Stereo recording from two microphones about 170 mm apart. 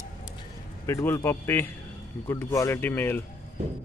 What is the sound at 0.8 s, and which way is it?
Speech, 15° left (ahead or behind).